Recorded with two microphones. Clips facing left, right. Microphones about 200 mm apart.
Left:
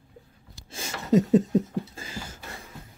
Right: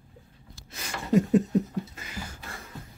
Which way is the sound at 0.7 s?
25° left (ahead or behind).